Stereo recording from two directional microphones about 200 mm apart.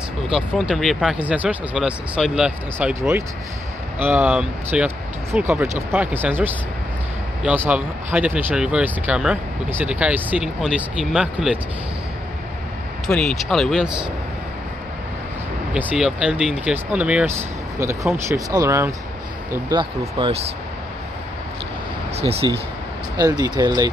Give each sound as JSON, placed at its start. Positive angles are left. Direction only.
{"t": 0.3, "sound": "speech", "side_deg": 0}
{"t": 13.0, "sound": "speech", "side_deg": 5}
{"t": 15.7, "sound": "speech", "side_deg": -5}
{"t": 22.1, "sound": "speech", "side_deg": -30}
{"t": 23.1, "sound": "speech", "side_deg": -20}